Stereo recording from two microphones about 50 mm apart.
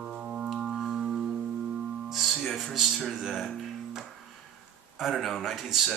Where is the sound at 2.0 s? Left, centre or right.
Centre.